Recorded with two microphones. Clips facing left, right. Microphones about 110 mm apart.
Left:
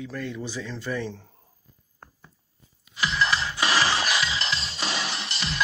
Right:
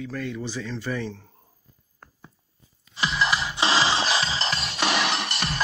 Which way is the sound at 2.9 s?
20° right (ahead or behind).